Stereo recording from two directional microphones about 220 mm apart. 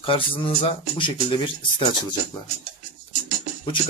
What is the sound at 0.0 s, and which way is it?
Speech, 25° left (ahead or behind).